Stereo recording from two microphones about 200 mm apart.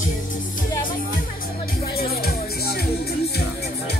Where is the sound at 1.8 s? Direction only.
50° left (ahead or behind).